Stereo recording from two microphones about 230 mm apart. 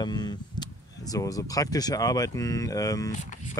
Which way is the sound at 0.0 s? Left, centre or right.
Centre.